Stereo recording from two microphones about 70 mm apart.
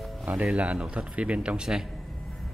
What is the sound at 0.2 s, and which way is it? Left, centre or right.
Music, right.